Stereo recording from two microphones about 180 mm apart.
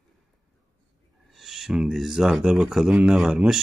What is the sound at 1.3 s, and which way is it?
Speech, centre (ahead or behind).